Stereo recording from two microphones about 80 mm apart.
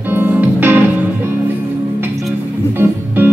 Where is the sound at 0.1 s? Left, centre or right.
Right.